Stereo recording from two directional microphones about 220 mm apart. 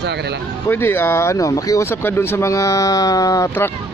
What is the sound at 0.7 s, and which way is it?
Speech, 10° left (ahead or behind).